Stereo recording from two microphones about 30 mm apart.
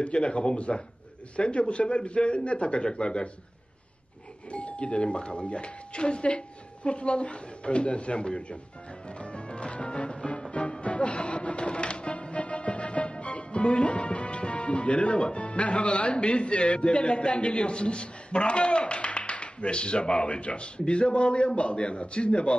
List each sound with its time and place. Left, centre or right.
0.0 s speech: left
4.5 s speech: left
9.2 s music: left